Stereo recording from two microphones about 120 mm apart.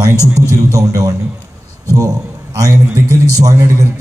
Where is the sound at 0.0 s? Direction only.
25° right (ahead or behind).